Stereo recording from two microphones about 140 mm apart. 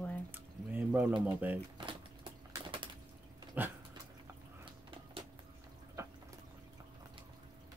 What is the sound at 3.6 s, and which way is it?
Dog, 10° right (ahead or behind).